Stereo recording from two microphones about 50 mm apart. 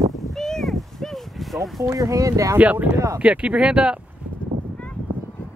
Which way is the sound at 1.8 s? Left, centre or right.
Right.